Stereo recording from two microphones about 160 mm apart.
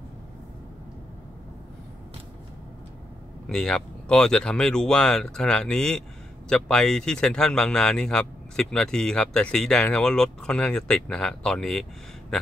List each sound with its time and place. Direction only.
3.4 s speech: 5° left (ahead or behind)